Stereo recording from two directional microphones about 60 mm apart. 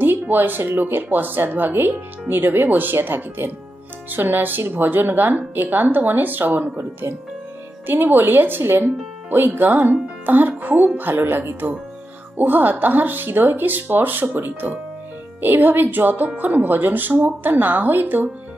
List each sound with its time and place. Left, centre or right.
0.0 s a woman's voice: right